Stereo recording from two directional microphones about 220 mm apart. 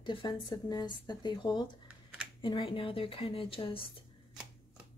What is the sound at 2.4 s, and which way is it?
A woman's voice, 20° left (ahead or behind).